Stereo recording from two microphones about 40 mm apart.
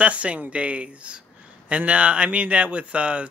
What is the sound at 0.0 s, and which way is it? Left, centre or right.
Speech, right.